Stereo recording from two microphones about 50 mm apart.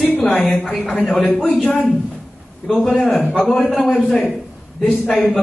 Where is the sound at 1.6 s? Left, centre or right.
Centre.